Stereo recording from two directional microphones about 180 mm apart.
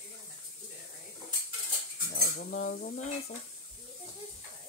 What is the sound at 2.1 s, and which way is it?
Cutlery, 50° left (ahead or behind).